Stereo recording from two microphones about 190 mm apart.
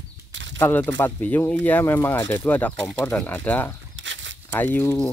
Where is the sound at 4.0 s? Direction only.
75° right (ahead or behind).